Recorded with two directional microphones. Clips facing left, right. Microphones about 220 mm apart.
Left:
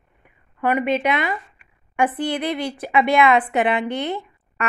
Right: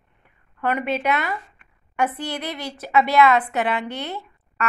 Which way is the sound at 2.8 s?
15° left (ahead or behind).